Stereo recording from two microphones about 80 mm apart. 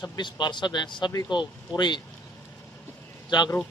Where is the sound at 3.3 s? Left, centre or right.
Left.